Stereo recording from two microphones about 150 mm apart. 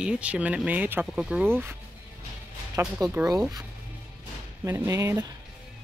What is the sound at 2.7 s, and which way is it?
Speech, 15° right (ahead or behind).